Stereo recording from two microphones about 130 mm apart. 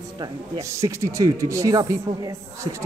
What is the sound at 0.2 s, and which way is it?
Speech, 25° right (ahead or behind).